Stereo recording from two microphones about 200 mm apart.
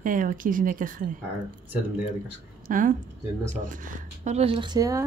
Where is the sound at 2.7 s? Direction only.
40° right (ahead or behind).